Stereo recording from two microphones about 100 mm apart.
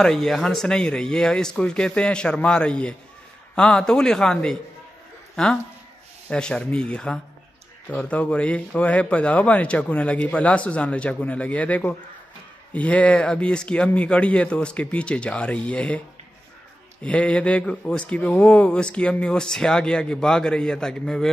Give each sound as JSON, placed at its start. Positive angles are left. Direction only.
{"t": 0.0, "sound": "a man's voice", "side_deg": 5}
{"t": 17.0, "sound": "a man's voice", "side_deg": 10}